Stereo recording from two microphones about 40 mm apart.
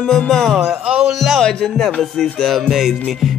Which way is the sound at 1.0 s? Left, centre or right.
Centre.